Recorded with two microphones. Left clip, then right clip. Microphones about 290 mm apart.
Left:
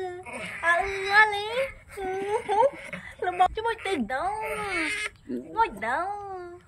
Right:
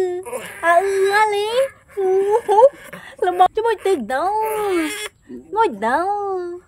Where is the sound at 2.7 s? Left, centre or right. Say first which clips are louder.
Right 1 dB; centre.